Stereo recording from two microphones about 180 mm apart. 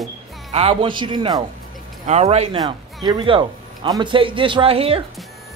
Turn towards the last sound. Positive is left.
turn(degrees=-30)  # may be behind; listen again after turning